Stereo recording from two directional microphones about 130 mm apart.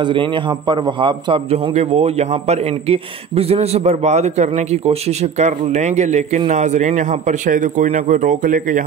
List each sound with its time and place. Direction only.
0.0 s a man's voice: 40° right (ahead or behind)
1.7 s a man's voice: 55° right (ahead or behind); by 8.8 s 85° right